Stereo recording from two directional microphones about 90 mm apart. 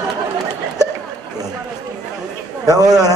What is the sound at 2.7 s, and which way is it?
Speech, 45° right (ahead or behind).